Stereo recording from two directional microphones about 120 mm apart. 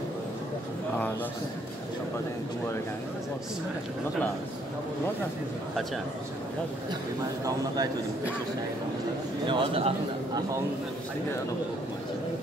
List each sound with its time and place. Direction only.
7.4 s speech: 30° right (ahead or behind)
9.5 s a man's voice: 50° right (ahead or behind)